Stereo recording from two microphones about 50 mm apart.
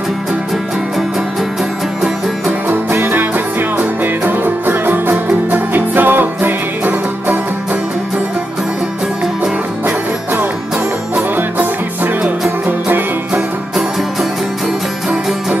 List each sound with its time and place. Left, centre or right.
2.7 s music: right